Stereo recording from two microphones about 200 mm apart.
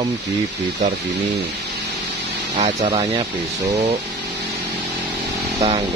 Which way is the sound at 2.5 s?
40° right (ahead or behind).